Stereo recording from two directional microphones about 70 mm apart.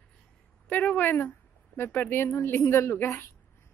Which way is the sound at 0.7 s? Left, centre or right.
Left.